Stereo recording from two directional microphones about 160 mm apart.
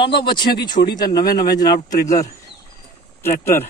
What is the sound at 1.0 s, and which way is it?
Speech, 70° left (ahead or behind).